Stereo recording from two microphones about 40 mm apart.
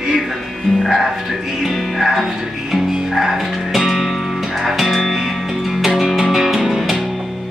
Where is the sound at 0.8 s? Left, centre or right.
Centre.